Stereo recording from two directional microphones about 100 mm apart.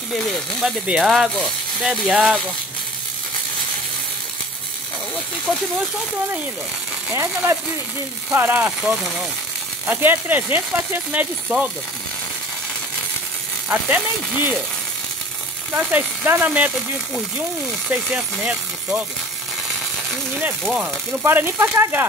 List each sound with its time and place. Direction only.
0.1 s speech: centre (ahead or behind)
5.5 s speech: 5° left (ahead or behind)
7.1 s speech: 25° right (ahead or behind)
13.7 s speech: 15° right (ahead or behind)
15.7 s speech: 15° right (ahead or behind)
21.2 s speech: 20° right (ahead or behind)